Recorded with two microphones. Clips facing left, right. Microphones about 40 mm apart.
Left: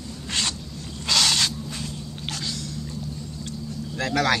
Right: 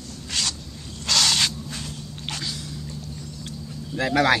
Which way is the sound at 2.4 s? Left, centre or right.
Centre.